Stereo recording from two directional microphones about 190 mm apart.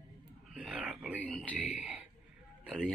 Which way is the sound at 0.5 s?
5° right (ahead or behind).